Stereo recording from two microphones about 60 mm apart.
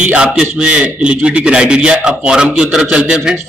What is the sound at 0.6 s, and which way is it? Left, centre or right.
A man's voice, centre.